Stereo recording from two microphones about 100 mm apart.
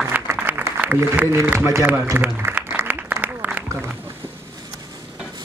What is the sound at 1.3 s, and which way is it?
Speech, 25° right (ahead or behind).